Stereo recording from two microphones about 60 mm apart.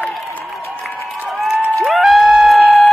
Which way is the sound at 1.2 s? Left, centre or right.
Centre.